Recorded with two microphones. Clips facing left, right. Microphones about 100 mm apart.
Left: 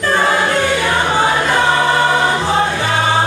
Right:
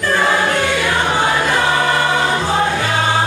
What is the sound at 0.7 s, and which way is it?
Music, 25° left (ahead or behind).